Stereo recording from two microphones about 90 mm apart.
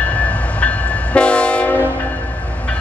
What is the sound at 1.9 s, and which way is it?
Music, 15° left (ahead or behind).